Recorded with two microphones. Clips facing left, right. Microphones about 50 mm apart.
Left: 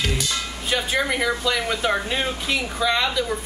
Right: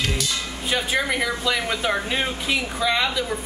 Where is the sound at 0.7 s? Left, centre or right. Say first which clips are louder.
Even; centre.